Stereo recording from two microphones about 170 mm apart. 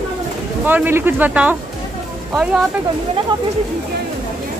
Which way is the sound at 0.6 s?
10° right (ahead or behind).